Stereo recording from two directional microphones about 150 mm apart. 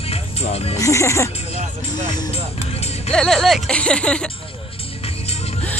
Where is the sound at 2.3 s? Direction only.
45° left (ahead or behind).